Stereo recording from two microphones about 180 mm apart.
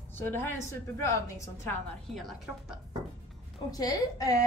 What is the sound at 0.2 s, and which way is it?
A woman's voice, 10° left (ahead or behind).